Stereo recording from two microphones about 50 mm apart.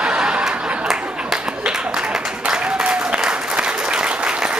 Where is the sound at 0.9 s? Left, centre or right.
Centre.